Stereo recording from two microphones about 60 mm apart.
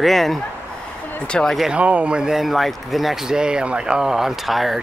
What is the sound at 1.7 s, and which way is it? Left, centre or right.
Speech, right.